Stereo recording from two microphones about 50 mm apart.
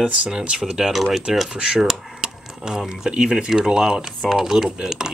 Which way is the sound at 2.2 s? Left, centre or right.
Centre.